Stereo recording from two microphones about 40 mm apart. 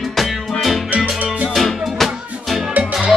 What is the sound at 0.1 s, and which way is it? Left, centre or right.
Music, centre.